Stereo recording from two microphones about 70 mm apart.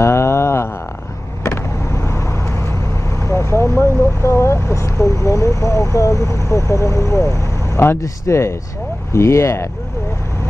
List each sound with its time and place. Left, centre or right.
0.0 s a sound: left
1.4 s vehicle: left
3.2 s speech: left